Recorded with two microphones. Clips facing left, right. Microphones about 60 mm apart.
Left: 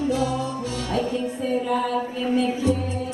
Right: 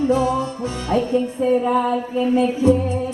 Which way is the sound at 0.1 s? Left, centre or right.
Right.